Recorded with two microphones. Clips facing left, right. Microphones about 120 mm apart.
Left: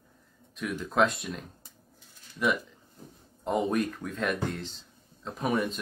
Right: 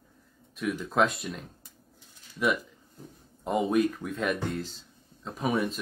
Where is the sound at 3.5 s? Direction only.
Centre (ahead or behind).